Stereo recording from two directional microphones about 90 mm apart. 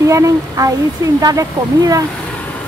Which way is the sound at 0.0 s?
35° right (ahead or behind).